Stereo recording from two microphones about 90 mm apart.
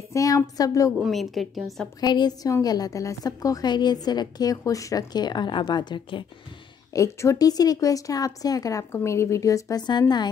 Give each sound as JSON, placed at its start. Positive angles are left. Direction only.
{"t": 0.1, "sound": "a woman's voice", "side_deg": 35}
{"t": 1.0, "sound": "a woman's voice", "side_deg": 0}
{"t": 2.0, "sound": "a woman's voice", "side_deg": 50}
{"t": 6.9, "sound": "speech", "side_deg": 35}